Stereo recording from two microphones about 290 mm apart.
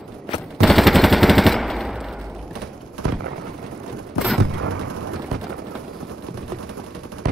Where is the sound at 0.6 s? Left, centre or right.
Centre.